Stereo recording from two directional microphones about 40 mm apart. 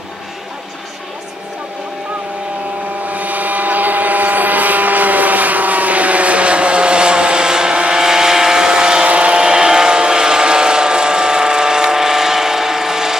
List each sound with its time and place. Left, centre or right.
3.1 s vehicle: right; by 9.0 s centre
9.0 s vehicle: right; by 13.2 s centre